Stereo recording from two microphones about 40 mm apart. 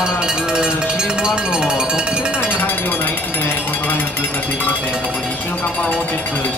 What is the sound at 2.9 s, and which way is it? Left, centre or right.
Jackhammer, left.